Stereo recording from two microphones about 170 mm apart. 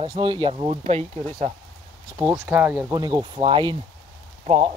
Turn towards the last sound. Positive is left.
turn(degrees=-35)  # may be behind; listen again after turning